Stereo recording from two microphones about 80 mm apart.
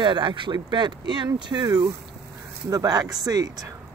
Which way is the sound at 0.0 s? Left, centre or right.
Right.